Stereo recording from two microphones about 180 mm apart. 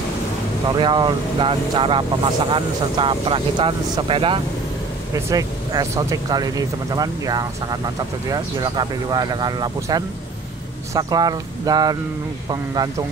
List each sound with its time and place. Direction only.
0.7 s speech: 25° right (ahead or behind)